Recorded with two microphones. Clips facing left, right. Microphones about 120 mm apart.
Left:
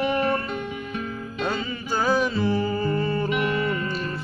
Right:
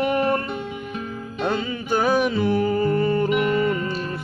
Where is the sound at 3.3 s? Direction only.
45° right (ahead or behind).